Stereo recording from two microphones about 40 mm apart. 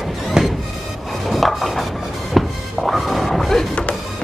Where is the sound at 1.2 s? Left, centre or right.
Centre.